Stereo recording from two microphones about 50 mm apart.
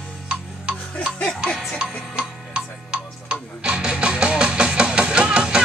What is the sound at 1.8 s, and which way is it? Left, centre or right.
Music, right.